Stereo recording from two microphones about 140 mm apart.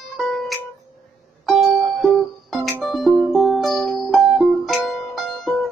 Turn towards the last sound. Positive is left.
turn(degrees=0)  # may be behind; listen again after turning